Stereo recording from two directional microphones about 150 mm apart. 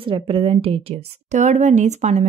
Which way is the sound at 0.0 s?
35° right (ahead or behind).